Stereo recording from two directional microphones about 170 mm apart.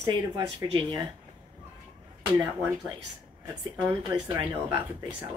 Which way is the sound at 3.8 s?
10° right (ahead or behind).